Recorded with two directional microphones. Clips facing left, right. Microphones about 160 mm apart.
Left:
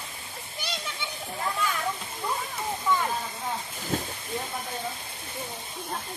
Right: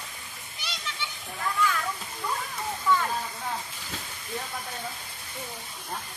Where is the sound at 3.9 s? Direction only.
50° left (ahead or behind).